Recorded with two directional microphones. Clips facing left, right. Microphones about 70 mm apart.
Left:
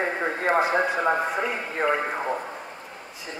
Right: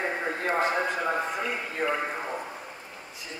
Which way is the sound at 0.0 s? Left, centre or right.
Left.